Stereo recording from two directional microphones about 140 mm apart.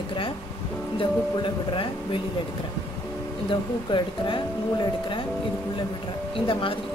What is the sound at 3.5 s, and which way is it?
A woman's voice, 35° left (ahead or behind).